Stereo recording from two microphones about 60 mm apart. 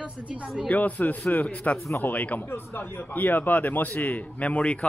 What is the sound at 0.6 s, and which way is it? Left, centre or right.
A man's voice, left.